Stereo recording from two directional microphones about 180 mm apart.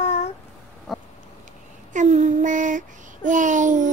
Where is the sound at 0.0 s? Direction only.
35° left (ahead or behind).